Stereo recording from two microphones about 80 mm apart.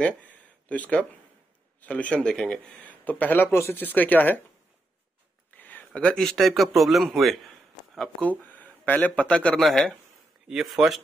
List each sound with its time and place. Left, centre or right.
0.0 s a man's voice: centre
2.6 s speech: left
5.6 s a sound: left
5.9 s a man's voice: centre
8.2 s speech: centre
9.6 s speech: centre